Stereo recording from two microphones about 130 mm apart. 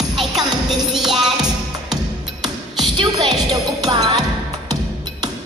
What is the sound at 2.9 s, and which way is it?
Music, 35° right (ahead or behind).